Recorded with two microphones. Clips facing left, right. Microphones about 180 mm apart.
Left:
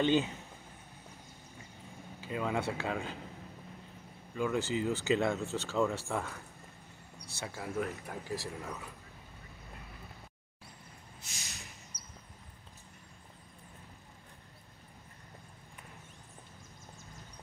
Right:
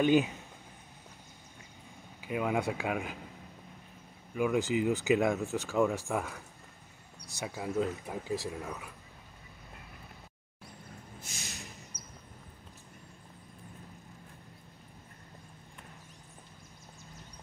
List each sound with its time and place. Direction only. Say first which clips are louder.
0.0 s speech: right 3 dB; 15° right (ahead or behind)
2.2 s speech: right 3 dB; 15° right (ahead or behind)
4.3 s speech: right 3 dB; 15° right (ahead or behind)
8.6 s speech: right 1 dB; centre (ahead or behind)
11.9 s vehicle: right 4 dB; 35° left (ahead or behind)